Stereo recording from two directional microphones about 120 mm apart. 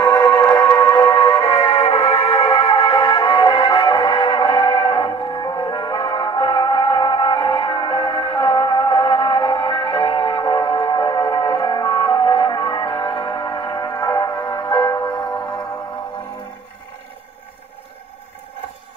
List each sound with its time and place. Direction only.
0.0 s music: 25° left (ahead or behind)
1.6 s music: 50° left (ahead or behind)
2.3 s music: 35° left (ahead or behind)
2.7 s music: 50° left (ahead or behind); by 15.3 s 30° left (ahead or behind)